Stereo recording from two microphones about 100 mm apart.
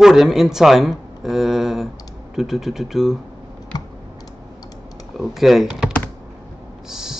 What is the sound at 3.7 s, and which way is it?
Computer keyboard, 40° left (ahead or behind).